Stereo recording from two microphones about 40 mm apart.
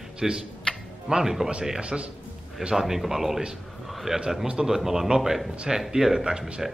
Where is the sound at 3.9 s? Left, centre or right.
Centre.